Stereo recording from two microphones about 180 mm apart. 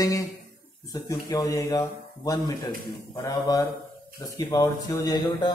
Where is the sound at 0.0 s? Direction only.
15° left (ahead or behind).